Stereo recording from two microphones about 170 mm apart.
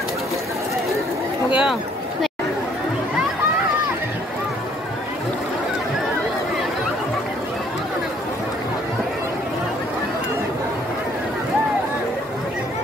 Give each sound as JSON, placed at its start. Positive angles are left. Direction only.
{"t": 1.5, "sound": "speech", "side_deg": -5}